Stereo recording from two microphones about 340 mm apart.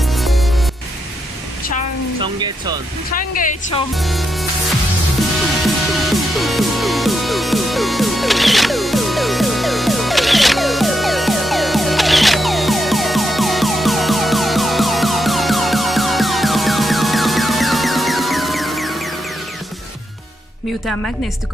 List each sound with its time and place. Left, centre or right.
0.0 s music: centre
2.1 s speech: centre
3.2 s a woman's voice: left
3.9 s music: centre